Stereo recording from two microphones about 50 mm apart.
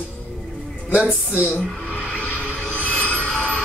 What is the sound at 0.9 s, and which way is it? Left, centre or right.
Speech, right.